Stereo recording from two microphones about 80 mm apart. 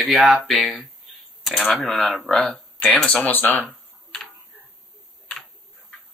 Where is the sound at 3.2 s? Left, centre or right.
Left.